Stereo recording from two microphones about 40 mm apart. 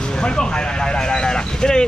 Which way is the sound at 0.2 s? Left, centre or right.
Left.